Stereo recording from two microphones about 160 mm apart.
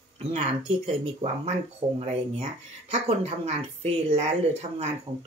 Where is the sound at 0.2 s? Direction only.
40° right (ahead or behind).